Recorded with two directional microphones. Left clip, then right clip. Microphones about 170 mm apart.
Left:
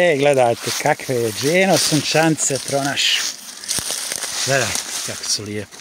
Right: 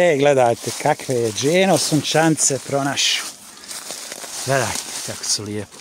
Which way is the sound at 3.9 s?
30° left (ahead or behind).